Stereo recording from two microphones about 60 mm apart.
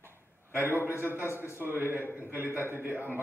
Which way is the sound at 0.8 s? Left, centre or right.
Left.